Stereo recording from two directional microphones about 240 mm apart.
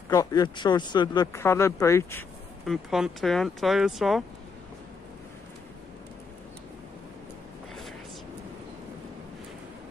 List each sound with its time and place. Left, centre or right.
0.1 s speech: centre
2.6 s speech: centre